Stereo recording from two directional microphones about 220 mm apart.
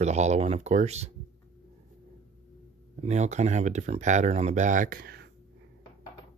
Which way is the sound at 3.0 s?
30° right (ahead or behind).